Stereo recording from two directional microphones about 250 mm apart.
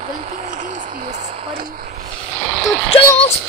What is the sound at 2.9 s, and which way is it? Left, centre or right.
Speech, left.